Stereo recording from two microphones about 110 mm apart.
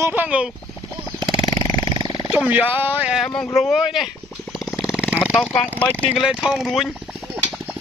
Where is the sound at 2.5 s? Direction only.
15° right (ahead or behind).